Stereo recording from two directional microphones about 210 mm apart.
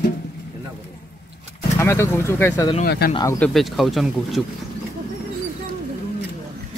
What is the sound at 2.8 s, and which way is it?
Speech, 45° left (ahead or behind).